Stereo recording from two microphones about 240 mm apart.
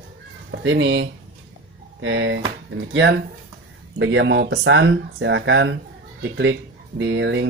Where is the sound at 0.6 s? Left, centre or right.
Right.